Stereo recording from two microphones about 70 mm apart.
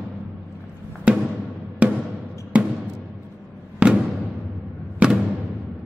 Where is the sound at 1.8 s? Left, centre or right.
Centre.